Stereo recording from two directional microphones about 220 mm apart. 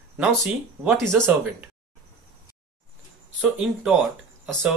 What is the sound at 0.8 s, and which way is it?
Speech, centre (ahead or behind).